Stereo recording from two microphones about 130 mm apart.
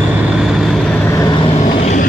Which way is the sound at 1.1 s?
25° left (ahead or behind).